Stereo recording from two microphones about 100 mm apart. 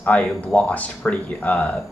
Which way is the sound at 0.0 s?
15° left (ahead or behind).